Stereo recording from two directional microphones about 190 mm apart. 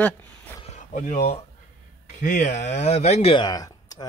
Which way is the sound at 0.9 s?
35° left (ahead or behind).